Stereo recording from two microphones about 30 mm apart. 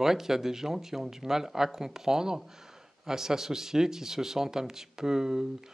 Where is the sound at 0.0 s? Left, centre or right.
Centre.